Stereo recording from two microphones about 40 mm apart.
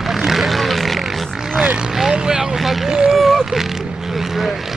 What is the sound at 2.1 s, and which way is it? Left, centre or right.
Vehicle, centre.